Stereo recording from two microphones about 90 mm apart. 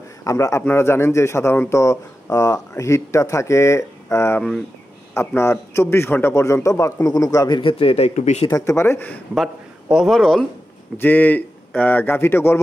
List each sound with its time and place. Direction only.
0.2 s speech: 35° left (ahead or behind); by 7.9 s 65° left (ahead or behind)
8.5 s speech: 40° left (ahead or behind)
8.7 s speech: 30° left (ahead or behind)
9.8 s speech: 5° right (ahead or behind)
11.0 s speech: 20° left (ahead or behind)